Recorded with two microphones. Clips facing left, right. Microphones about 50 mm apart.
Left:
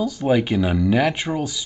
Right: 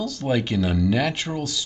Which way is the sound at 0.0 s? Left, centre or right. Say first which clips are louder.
Left 5 dB; centre.